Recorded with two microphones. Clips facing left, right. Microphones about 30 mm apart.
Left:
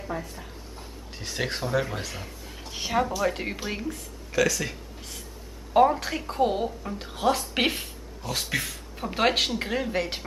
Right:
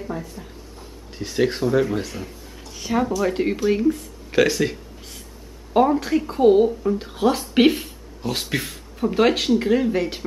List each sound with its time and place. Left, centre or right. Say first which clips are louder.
0.0 s a woman's voice: right 3 dB; centre
2.6 s a sound: left 3 dB; left
3.2 s a woman's voice: right 6 dB; centre
4.3 s speech: right 6 dB; right
5.7 s a woman's voice: right 3 dB; centre
9.0 s a woman's voice: right 5 dB; centre